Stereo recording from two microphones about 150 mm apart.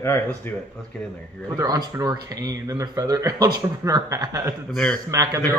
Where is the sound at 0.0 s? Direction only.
15° left (ahead or behind).